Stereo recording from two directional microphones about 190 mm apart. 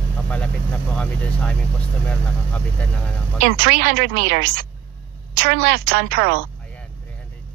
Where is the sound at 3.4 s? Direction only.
55° right (ahead or behind).